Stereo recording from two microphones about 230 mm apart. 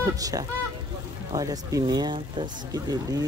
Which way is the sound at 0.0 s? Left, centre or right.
Centre.